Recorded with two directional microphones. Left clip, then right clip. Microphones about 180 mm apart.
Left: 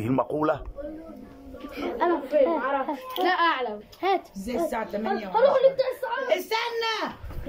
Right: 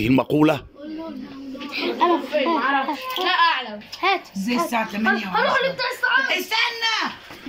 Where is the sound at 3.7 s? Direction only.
15° left (ahead or behind).